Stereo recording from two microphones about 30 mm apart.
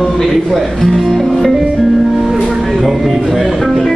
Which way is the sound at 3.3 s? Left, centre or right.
Centre.